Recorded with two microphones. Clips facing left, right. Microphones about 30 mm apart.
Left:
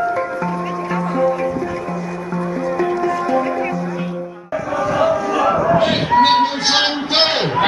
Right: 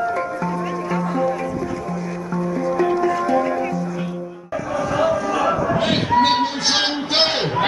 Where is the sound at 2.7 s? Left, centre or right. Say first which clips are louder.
Even; centre.